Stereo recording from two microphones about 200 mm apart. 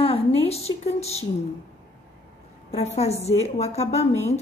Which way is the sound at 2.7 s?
30° left (ahead or behind).